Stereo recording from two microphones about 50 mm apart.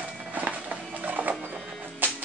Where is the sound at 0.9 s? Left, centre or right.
Right.